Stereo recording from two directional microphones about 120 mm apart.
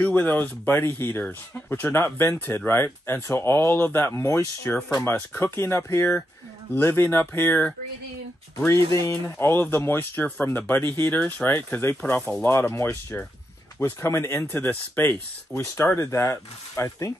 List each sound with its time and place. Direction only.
0.0 s speech: 15° left (ahead or behind)
8.9 s speech: 20° left (ahead or behind)